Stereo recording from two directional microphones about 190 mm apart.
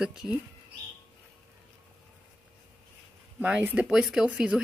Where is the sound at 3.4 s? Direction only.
10° right (ahead or behind).